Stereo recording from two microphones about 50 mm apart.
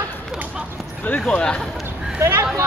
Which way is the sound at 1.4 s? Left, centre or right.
Centre.